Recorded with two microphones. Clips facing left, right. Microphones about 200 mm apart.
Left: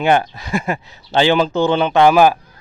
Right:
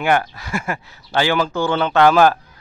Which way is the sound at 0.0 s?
20° left (ahead or behind).